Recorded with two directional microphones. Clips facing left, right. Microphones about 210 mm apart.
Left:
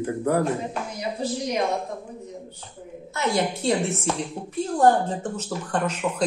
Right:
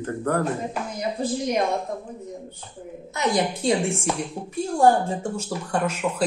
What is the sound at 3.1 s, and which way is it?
A woman's voice, 15° right (ahead or behind).